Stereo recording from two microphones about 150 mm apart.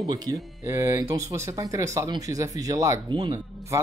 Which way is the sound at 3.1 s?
30° right (ahead or behind).